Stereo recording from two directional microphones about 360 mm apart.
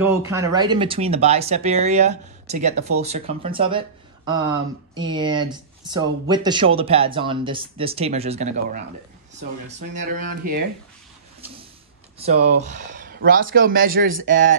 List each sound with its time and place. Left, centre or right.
0.0 s speech: centre
12.6 s speech: right